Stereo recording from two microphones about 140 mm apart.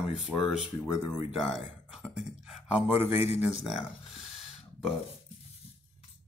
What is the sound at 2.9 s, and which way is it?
Speech, 15° right (ahead or behind).